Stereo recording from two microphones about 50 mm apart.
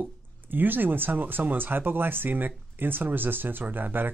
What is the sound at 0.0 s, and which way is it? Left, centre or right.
Speech, right.